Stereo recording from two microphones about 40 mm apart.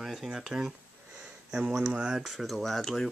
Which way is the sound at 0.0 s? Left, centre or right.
Centre.